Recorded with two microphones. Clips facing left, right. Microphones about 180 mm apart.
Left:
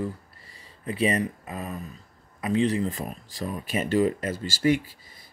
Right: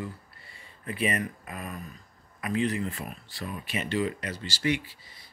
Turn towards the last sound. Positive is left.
turn(degrees=45)  # may be behind; listen again after turning